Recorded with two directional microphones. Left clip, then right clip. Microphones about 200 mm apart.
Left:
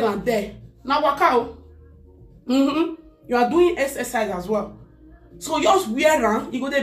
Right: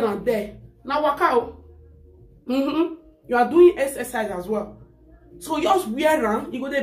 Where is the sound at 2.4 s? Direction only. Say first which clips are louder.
Left 2 dB; 20° right (ahead or behind).